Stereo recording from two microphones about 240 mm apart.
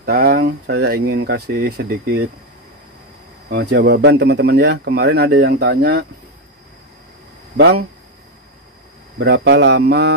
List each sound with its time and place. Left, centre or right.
0.0 s speech: right
3.4 s speech: right
7.5 s speech: right
9.2 s speech: right